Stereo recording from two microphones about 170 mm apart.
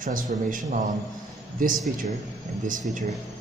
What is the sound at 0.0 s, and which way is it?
Speech, 50° right (ahead or behind).